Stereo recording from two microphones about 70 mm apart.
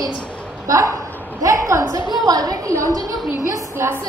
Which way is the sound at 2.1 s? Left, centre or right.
Right.